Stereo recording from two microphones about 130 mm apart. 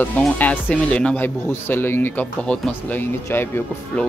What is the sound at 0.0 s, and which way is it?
Speech, 15° left (ahead or behind).